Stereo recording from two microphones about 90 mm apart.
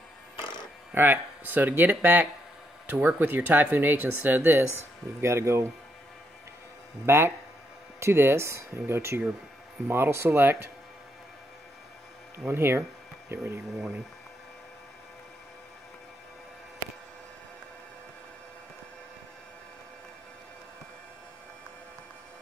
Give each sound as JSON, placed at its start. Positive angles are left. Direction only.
{"t": 0.9, "sound": "speech", "side_deg": -25}
{"t": 7.1, "sound": "speech", "side_deg": -30}
{"t": 12.4, "sound": "speech", "side_deg": -30}